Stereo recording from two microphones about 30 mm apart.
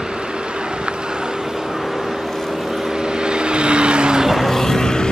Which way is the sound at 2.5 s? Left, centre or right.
Centre.